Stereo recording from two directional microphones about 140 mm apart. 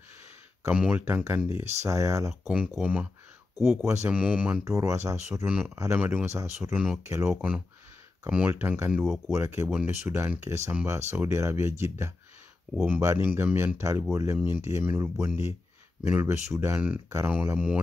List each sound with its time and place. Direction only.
0.7 s speech: 10° right (ahead or behind)
2.5 s speech: 10° right (ahead or behind)
3.8 s speech: 20° right (ahead or behind)
4.1 s speech: 10° right (ahead or behind)
4.6 s speech: 20° right (ahead or behind)
6.7 s speech: 5° right (ahead or behind)
7.1 s speech: 20° right (ahead or behind)
8.9 s speech: centre (ahead or behind)
9.3 s speech: 20° right (ahead or behind)